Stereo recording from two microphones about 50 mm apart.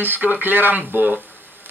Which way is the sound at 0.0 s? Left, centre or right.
Right.